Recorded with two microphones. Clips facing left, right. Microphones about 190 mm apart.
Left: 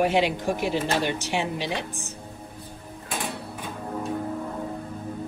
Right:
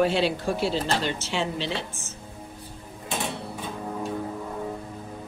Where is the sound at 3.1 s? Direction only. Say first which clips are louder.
Right 1 dB; 5° left (ahead or behind).